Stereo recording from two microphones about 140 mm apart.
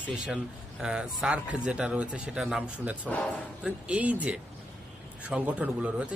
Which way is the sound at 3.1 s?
10° left (ahead or behind).